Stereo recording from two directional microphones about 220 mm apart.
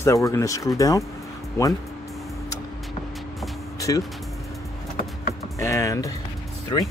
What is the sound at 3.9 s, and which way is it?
Speech, 15° left (ahead or behind).